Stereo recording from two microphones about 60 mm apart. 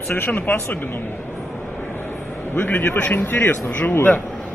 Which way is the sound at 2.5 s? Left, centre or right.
Left.